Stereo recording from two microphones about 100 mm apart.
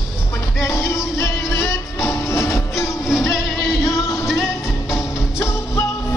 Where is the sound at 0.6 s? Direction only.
30° left (ahead or behind).